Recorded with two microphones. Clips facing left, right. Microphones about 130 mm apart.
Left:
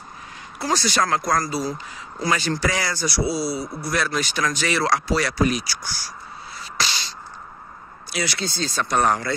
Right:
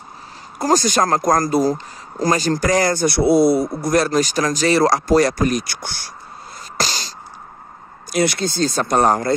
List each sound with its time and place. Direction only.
0.6 s speech: 45° right (ahead or behind); by 6.1 s 60° right (ahead or behind)
6.8 s a sound: 40° right (ahead or behind)
8.1 s speech: 50° right (ahead or behind)